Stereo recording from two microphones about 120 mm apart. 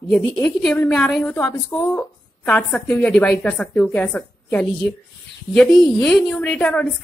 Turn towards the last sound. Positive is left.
turn(degrees=10)  # may be behind; listen again after turning